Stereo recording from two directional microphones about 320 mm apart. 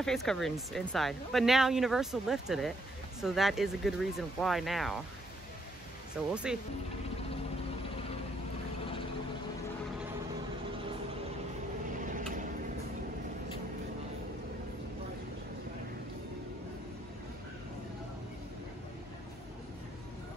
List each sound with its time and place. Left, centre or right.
0.0 s speech: centre
6.3 s speech: centre
12.1 s vehicle: right